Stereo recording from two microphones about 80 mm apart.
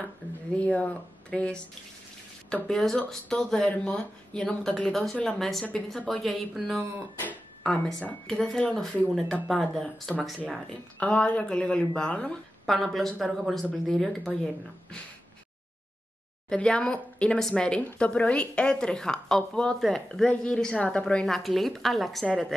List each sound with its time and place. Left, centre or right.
0.6 s speech: centre
7.6 s speech: centre
11.0 s speech: centre
12.6 s speech: centre
16.4 s speech: centre
21.4 s speech: centre